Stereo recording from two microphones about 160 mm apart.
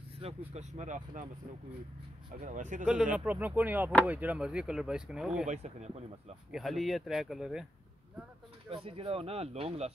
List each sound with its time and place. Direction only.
0.5 s speech: 45° right (ahead or behind)
2.4 s speech: 55° right (ahead or behind)
2.9 s speech: 5° right (ahead or behind)
5.5 s speech: 45° right (ahead or behind)
6.5 s speech: centre (ahead or behind)
8.6 s speech: 35° right (ahead or behind)